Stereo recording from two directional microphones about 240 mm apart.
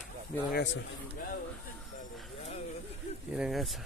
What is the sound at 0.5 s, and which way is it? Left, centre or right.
Speech, left.